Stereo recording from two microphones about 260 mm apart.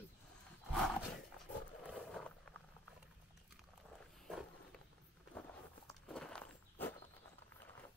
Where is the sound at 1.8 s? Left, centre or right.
Centre.